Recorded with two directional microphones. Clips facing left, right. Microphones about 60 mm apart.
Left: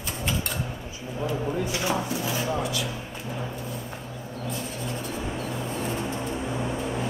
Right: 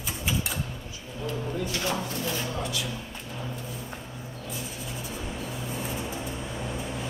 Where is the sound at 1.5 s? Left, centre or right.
Centre.